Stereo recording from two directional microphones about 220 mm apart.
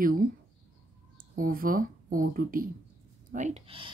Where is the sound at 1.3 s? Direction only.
40° right (ahead or behind).